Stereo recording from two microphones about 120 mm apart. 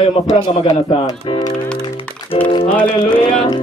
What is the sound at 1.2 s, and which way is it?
Speech, 45° left (ahead or behind).